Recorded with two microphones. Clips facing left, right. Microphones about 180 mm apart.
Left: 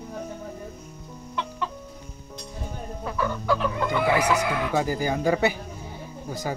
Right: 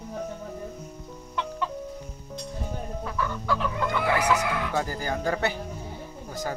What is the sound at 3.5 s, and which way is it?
Chicken, 15° left (ahead or behind).